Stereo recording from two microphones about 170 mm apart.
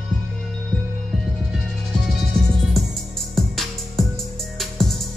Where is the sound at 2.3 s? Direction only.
Centre (ahead or behind).